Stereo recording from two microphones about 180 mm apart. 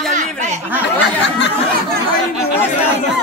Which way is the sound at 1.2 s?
75° left (ahead or behind).